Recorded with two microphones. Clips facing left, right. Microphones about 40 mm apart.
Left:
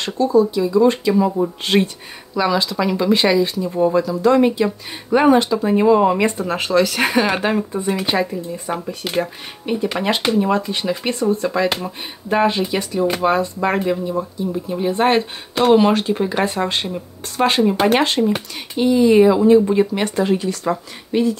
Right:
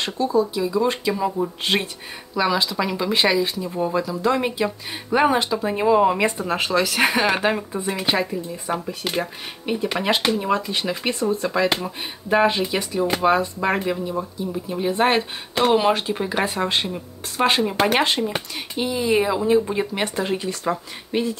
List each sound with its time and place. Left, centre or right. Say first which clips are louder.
0.0 s speech: left 5 dB; centre